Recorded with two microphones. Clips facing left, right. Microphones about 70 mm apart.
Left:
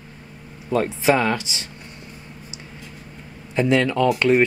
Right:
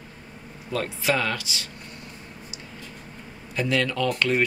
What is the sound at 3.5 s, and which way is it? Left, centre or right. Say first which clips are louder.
Speech: left 6 dB; left.